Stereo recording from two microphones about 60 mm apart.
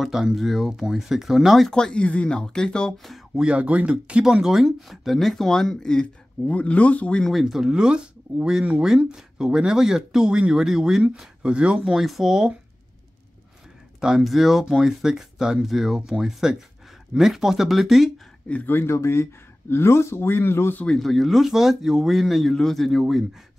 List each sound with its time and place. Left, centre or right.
0.0 s speech: centre
1.7 s speech: centre
3.3 s speech: centre
6.4 s speech: left
7.2 s speech: centre
14.2 s speech: centre
18.7 s speech: left
18.9 s speech: left
20.8 s speech: centre